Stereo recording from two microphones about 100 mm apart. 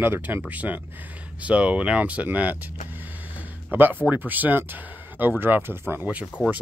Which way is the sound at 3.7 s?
20° right (ahead or behind).